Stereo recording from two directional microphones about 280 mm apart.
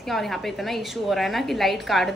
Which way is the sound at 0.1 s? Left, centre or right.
Centre.